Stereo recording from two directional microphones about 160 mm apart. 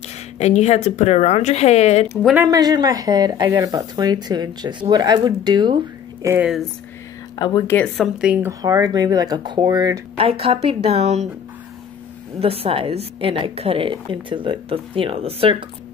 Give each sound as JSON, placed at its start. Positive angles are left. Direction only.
{"t": 0.4, "sound": "speech", "side_deg": 45}
{"t": 2.4, "sound": "speech", "side_deg": -25}
{"t": 6.2, "sound": "speech", "side_deg": -15}
{"t": 7.3, "sound": "a woman's voice", "side_deg": 25}
{"t": 7.7, "sound": "a woman's voice", "side_deg": 0}
{"t": 8.5, "sound": "speech", "side_deg": -20}
{"t": 10.4, "sound": "a woman's voice", "side_deg": -40}
{"t": 12.4, "sound": "a woman's voice", "side_deg": -40}